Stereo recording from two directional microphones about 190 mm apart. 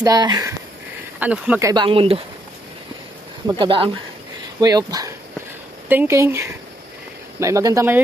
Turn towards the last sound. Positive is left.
turn(degrees=-15)  # may be behind; listen again after turning